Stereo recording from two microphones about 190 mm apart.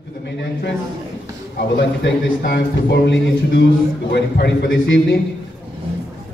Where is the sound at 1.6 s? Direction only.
60° left (ahead or behind).